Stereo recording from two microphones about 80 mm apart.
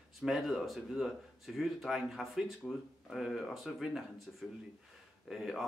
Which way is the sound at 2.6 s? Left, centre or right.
Centre.